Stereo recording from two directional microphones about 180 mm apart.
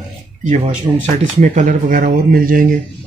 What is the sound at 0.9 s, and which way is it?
Speech, 10° right (ahead or behind).